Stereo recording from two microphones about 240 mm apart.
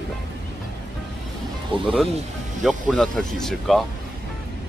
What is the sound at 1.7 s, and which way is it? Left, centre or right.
Speech, right.